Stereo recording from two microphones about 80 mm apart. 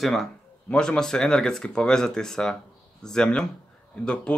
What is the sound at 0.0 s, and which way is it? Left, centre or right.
Speech, centre.